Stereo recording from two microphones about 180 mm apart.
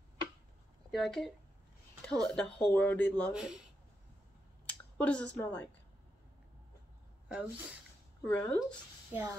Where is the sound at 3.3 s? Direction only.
5° right (ahead or behind).